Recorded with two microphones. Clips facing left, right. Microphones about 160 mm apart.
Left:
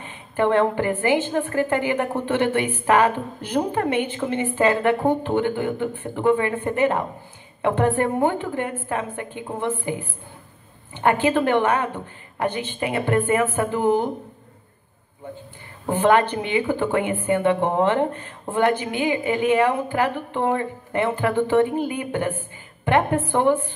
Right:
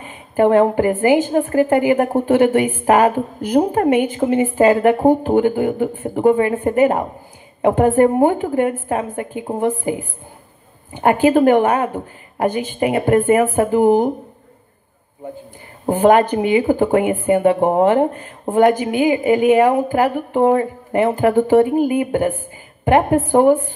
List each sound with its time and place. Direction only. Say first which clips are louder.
0.4 s a woman's voice: right 6 dB; 40° right (ahead or behind)
15.8 s a woman's voice: right 5 dB; 40° right (ahead or behind)
21.6 s speech: right 8 dB; 10° right (ahead or behind)
22.8 s a woman's voice: right 6 dB; 40° right (ahead or behind)